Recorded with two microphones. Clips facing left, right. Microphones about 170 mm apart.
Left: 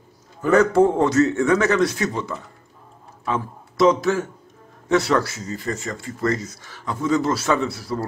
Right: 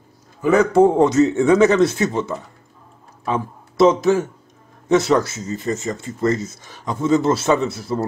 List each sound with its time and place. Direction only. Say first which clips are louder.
0.4 s speech: right 2 dB; 10° right (ahead or behind)